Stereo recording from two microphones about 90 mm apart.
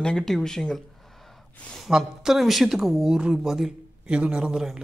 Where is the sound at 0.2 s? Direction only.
5° left (ahead or behind).